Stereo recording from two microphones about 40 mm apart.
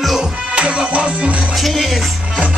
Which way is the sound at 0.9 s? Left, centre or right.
Right.